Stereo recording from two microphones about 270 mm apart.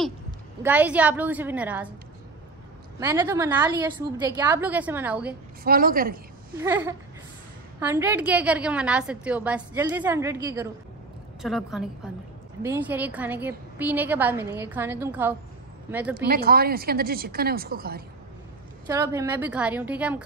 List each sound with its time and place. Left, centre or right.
0.6 s a woman's voice: centre
3.0 s a woman's voice: centre
5.6 s a woman's voice: right
6.5 s a woman's voice: centre
16.3 s a woman's voice: right
18.9 s a woman's voice: centre